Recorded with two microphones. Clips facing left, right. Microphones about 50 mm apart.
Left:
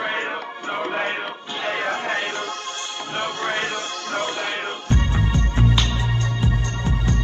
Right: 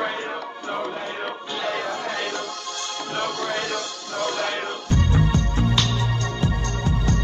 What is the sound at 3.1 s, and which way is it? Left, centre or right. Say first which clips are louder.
Music: left 1 dB; left.